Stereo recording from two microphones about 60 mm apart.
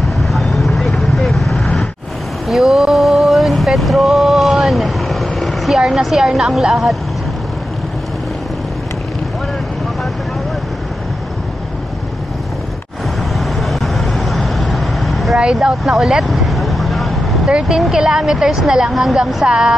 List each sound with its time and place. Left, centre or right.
0.2 s vehicle: centre
2.4 s a sound: centre
5.8 s a woman's voice: centre
13.4 s vehicle: centre
17.5 s a woman's voice: centre